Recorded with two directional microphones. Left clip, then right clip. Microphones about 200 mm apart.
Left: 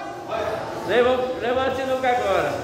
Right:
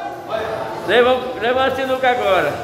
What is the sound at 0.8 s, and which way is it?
A man's voice, 30° right (ahead or behind).